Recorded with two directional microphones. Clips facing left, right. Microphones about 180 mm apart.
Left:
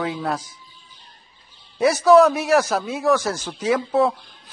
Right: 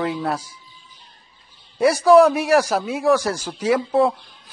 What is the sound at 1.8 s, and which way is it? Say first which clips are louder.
A man's voice: right 1 dB; 10° right (ahead or behind).